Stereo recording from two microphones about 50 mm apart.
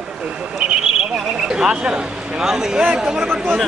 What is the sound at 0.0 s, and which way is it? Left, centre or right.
Speech, centre.